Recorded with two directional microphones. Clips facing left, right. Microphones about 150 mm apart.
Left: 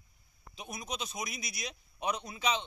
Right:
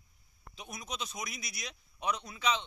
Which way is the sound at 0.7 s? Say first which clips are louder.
Left 2 dB; 20° left (ahead or behind).